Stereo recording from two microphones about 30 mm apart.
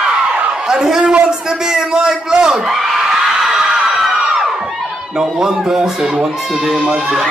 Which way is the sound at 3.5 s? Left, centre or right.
Centre.